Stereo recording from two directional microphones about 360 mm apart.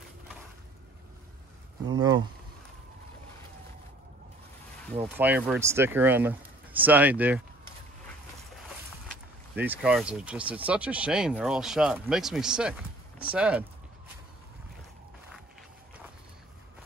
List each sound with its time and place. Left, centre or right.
1.9 s speech: centre
5.0 s speech: centre
9.1 s speech: centre